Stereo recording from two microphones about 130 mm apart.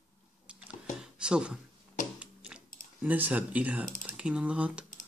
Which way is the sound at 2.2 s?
10° right (ahead or behind).